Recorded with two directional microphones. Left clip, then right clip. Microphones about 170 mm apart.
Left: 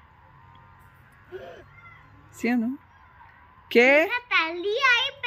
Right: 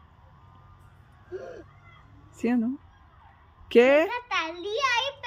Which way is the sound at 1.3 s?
20° right (ahead or behind).